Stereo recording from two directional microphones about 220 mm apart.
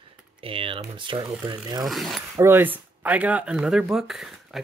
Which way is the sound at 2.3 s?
10° right (ahead or behind).